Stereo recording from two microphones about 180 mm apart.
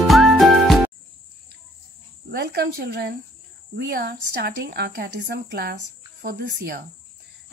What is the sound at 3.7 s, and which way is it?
Speech, 65° right (ahead or behind).